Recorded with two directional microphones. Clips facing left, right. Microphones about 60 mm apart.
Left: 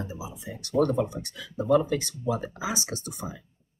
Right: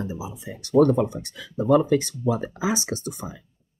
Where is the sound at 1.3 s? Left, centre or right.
Right.